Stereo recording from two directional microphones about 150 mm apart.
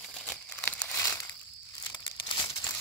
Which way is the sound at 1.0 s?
25° left (ahead or behind).